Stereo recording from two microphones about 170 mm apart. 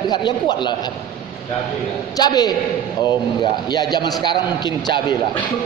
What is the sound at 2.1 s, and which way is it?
Speech, 20° left (ahead or behind).